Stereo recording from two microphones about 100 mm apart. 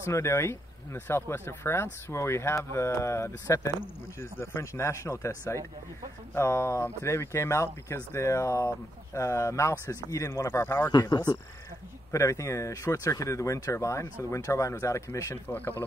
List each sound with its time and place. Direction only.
0.0 s speech: 30° left (ahead or behind)
10.9 s speech: 45° left (ahead or behind)
12.1 s speech: 30° left (ahead or behind)
15.4 s speech: 15° left (ahead or behind)